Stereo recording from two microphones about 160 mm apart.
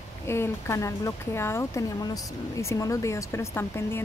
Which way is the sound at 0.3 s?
15° left (ahead or behind).